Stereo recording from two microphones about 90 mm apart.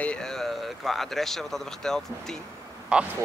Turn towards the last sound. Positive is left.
turn(degrees=-10)  # may be behind; listen again after turning